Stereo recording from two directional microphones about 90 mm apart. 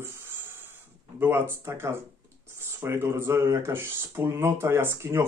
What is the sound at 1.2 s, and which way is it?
Speech, 25° right (ahead or behind).